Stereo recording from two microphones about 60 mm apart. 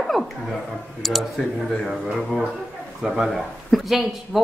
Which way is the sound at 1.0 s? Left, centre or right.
Centre.